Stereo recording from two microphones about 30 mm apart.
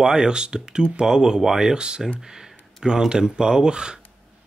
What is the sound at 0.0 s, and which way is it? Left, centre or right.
Speech, right.